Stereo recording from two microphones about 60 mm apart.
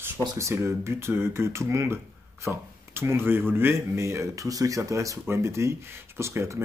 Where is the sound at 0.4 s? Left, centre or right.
Right.